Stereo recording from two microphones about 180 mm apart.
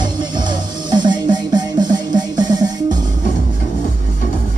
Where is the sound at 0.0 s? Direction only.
25° right (ahead or behind).